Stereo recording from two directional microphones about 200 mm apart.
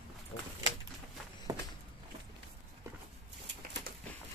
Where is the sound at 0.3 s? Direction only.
50° left (ahead or behind).